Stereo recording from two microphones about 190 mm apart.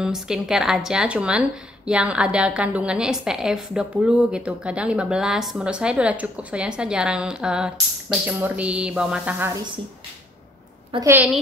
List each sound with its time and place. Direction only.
0.0 s a woman's voice: 5° right (ahead or behind)
10.9 s a woman's voice: 30° right (ahead or behind)